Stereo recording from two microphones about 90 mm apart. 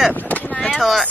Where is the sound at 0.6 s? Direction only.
Centre (ahead or behind).